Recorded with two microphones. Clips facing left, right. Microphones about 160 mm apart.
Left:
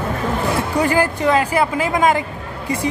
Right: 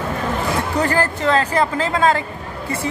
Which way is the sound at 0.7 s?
10° left (ahead or behind).